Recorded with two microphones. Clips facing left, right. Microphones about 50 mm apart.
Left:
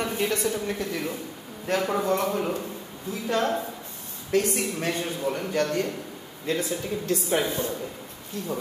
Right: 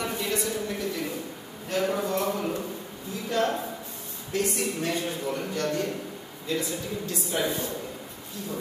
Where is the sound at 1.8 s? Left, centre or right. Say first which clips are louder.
Even; left.